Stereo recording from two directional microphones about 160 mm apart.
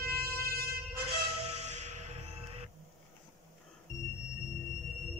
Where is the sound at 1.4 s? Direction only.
40° right (ahead or behind).